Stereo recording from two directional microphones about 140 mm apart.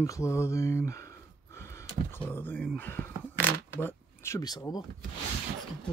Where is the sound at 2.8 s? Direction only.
15° left (ahead or behind).